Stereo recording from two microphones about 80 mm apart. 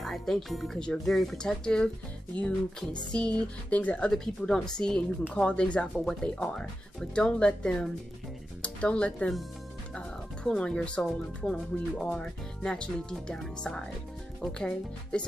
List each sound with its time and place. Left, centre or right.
0.0 s speech: centre
4.1 s speech: centre